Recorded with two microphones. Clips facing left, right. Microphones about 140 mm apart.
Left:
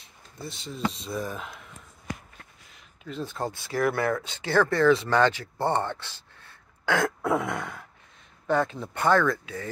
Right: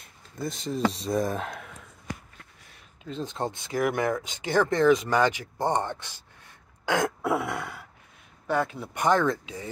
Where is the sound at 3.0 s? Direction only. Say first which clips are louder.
Right 1 dB; 25° right (ahead or behind).